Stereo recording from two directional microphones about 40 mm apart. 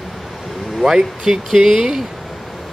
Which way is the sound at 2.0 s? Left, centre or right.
Centre.